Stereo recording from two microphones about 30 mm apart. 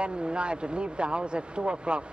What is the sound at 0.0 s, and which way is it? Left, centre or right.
Speech, right.